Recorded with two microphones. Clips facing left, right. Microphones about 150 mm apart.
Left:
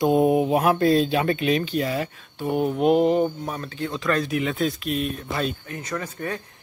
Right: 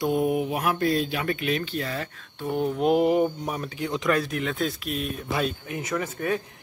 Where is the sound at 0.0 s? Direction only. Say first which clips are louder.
Left 5 dB; 25° left (ahead or behind).